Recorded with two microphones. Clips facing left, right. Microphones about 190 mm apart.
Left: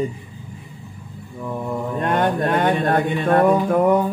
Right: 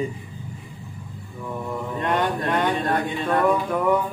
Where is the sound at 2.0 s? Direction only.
50° left (ahead or behind).